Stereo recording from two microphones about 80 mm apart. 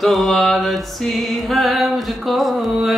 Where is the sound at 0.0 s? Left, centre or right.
Centre.